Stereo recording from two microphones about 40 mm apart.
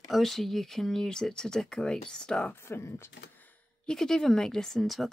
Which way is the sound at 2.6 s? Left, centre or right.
Left.